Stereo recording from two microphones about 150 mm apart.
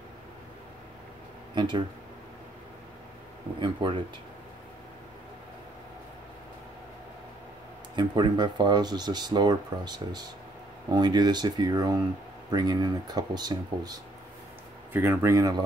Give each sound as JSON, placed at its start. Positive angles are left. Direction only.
{"t": 1.5, "sound": "speech", "side_deg": -30}
{"t": 3.5, "sound": "speech", "side_deg": -35}
{"t": 7.9, "sound": "speech", "side_deg": -30}
{"t": 14.9, "sound": "speech", "side_deg": -15}